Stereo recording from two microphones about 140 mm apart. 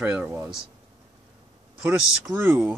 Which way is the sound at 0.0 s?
15° right (ahead or behind).